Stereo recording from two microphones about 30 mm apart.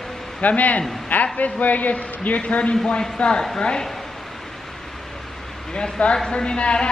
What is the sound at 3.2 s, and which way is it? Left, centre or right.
Speech, left.